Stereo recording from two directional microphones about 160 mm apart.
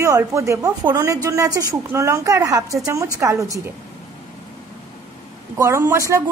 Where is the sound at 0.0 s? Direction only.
20° right (ahead or behind).